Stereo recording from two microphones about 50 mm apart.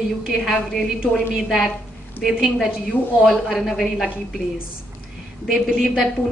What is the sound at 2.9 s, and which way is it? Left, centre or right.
Speech, left.